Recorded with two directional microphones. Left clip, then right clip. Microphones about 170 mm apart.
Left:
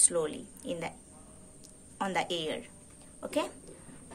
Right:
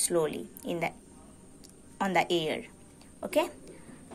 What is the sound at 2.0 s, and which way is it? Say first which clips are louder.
Speech: right 5 dB; 25° right (ahead or behind).